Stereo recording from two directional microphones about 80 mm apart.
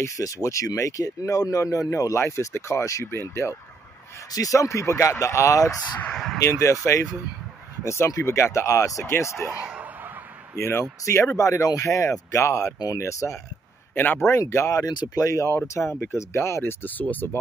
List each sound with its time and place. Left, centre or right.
0.0 s speech: left
2.1 s speech: left
4.3 s speech: left
6.0 s a sound: centre
6.4 s speech: left
9.5 s a sound: centre
10.6 s speech: left
12.7 s speech: left
13.0 s speech: left
13.9 s speech: left
14.7 s speech: left
16.8 s speech: left